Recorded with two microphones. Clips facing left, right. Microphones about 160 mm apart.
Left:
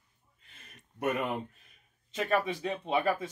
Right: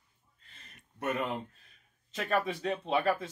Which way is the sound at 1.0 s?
15° left (ahead or behind).